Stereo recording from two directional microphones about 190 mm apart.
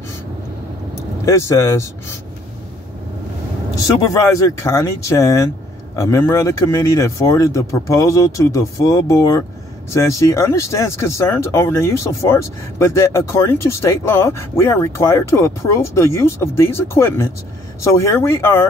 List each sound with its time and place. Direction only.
1.2 s speech: 15° left (ahead or behind)
3.8 s speech: 20° left (ahead or behind)